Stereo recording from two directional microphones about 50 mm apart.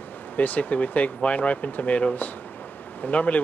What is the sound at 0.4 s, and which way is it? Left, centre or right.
Speech, left.